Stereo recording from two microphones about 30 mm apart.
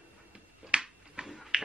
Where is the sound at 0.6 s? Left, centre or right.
Right.